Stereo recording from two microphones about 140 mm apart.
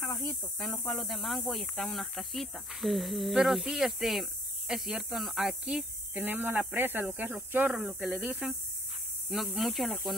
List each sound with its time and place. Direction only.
0.1 s speech: 25° left (ahead or behind)
0.4 s speech: 5° left (ahead or behind)